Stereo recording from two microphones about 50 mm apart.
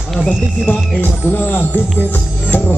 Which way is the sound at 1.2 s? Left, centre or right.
Left.